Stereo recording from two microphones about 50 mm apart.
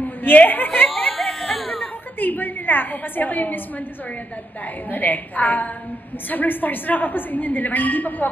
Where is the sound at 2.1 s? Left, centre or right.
Left.